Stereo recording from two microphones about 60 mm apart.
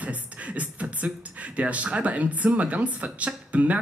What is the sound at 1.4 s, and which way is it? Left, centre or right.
Speech, right.